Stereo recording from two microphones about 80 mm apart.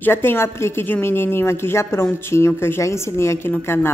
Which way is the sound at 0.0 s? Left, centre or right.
Left.